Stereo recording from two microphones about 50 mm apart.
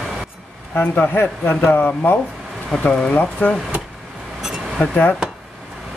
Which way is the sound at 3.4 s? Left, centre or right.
Left.